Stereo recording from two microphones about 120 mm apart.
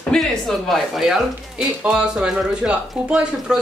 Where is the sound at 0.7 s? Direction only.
Centre (ahead or behind).